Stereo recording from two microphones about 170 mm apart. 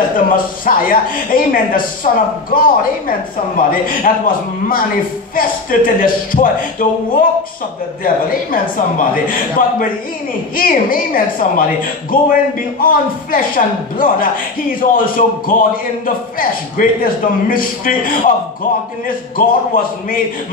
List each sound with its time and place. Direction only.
0.3 s a man's voice: 55° left (ahead or behind)